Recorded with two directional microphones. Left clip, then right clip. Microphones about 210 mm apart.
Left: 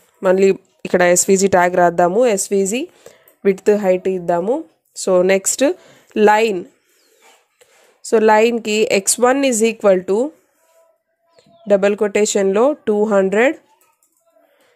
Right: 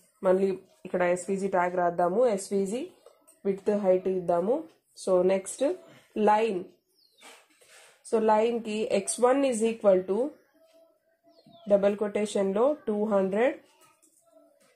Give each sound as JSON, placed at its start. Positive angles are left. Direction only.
{"t": 0.2, "sound": "speech", "side_deg": 40}
{"t": 8.1, "sound": "speech", "side_deg": 40}
{"t": 11.6, "sound": "speech", "side_deg": 40}